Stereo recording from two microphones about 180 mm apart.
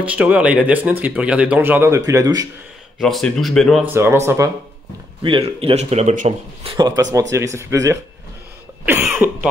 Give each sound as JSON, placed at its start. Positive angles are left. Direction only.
{"t": 0.0, "sound": "speech", "side_deg": -10}
{"t": 3.0, "sound": "speech", "side_deg": 0}
{"t": 3.8, "sound": "speech", "side_deg": -15}
{"t": 5.2, "sound": "speech", "side_deg": -30}